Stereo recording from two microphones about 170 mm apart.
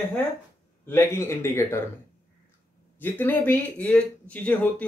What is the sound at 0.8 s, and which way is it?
Speech, 15° left (ahead or behind).